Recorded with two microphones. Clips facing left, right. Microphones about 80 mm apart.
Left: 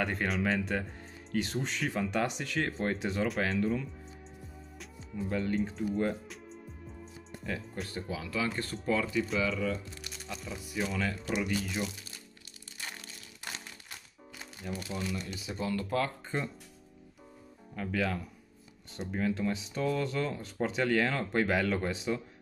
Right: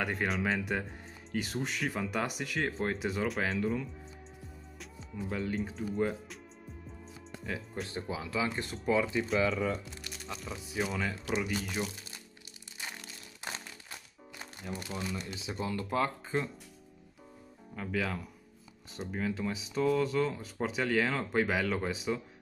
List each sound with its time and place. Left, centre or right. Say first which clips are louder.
0.0 s speech: left 1 dB; centre
7.4 s speech: even; centre
7.9 s speech: right 1 dB; right
9.4 s speech: right 1 dB; right
10.8 s speech: left 1 dB; centre
14.4 s speech: left 1 dB; right
17.7 s speech: left 2 dB; centre